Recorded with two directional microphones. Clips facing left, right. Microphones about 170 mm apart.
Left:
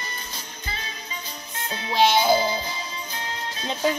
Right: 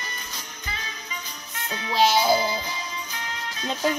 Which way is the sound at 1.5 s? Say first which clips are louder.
Even; 30° left (ahead or behind).